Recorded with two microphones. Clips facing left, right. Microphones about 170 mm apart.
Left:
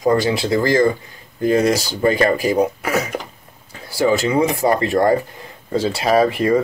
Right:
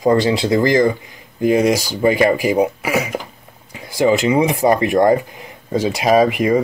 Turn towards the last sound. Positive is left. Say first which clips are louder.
# right 1 dB
turn(degrees=-15)  # may be behind; listen again after turning